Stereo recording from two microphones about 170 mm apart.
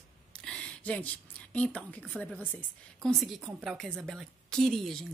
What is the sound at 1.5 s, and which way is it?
A woman's voice, 10° left (ahead or behind).